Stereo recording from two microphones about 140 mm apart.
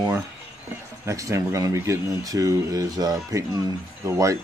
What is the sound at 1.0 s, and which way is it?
Speech, 20° right (ahead or behind).